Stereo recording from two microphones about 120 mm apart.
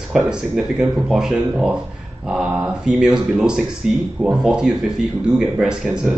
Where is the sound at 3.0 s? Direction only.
5° right (ahead or behind).